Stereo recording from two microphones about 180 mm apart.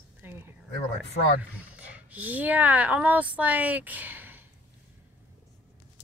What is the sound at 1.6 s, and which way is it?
Speech, 10° right (ahead or behind).